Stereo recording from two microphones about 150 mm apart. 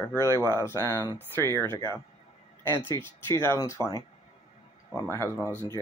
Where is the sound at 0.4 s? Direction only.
20° right (ahead or behind).